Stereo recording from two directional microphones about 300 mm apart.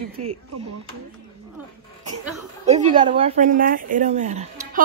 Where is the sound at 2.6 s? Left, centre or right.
Centre.